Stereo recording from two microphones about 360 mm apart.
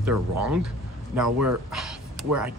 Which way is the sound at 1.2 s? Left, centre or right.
Right.